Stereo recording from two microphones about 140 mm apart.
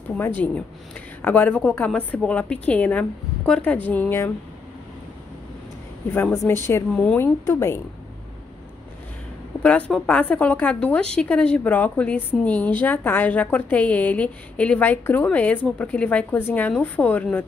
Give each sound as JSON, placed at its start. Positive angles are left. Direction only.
{"t": 0.2, "sound": "a woman's voice", "side_deg": 10}
{"t": 6.1, "sound": "a woman's voice", "side_deg": 15}
{"t": 9.6, "sound": "a woman's voice", "side_deg": 10}